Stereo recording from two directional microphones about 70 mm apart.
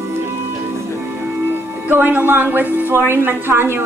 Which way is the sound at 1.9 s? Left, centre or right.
Right.